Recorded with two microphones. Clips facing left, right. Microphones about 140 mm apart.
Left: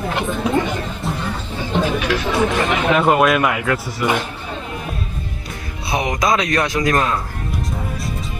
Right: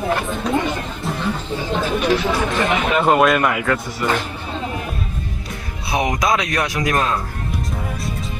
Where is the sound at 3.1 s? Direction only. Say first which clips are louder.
Right 2 dB; centre (ahead or behind).